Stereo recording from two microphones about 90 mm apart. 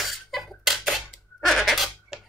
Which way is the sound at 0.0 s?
Centre (ahead or behind).